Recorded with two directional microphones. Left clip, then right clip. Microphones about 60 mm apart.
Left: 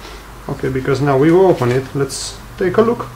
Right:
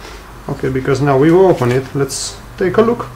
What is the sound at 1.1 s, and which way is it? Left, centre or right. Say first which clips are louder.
Speech: right 1 dB; centre.